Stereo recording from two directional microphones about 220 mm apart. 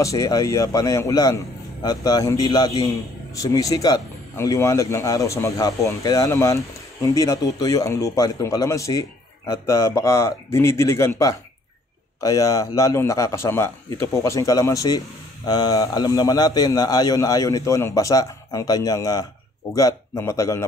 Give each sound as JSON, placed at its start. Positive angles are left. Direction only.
{"t": 0.0, "sound": "a man's voice", "side_deg": 15}